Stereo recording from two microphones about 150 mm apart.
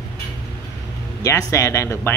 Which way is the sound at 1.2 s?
20° left (ahead or behind).